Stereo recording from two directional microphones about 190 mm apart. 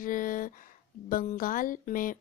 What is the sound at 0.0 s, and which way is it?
Speech, 45° left (ahead or behind).